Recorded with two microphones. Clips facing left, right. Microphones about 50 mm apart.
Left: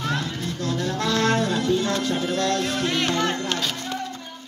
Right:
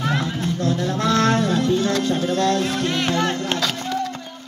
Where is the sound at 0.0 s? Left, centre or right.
Centre.